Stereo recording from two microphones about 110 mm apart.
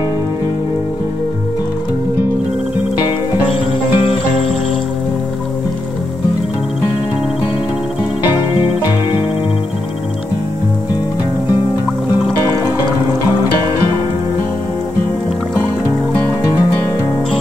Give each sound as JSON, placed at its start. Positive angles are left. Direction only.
{"t": 3.5, "sound": "music", "side_deg": 55}